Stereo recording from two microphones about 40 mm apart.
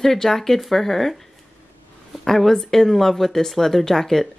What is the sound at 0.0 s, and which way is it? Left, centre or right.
Speech, centre.